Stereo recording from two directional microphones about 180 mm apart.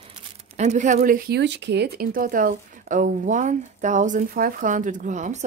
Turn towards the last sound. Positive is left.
turn(degrees=-40)  # may be behind; listen again after turning